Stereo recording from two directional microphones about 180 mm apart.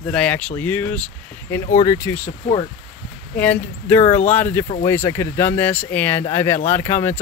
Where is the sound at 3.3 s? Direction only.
10° left (ahead or behind).